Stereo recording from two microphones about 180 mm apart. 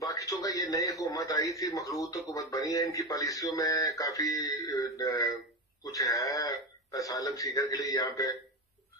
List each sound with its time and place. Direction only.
0.0 s a man's voice: 20° left (ahead or behind)